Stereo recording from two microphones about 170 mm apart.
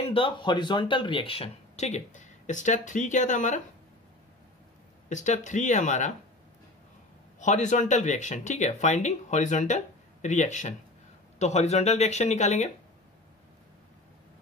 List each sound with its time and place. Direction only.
0.0 s speech: 30° left (ahead or behind); by 3.6 s 45° left (ahead or behind)
5.1 s speech: 45° left (ahead or behind)
7.3 s speech: 45° left (ahead or behind)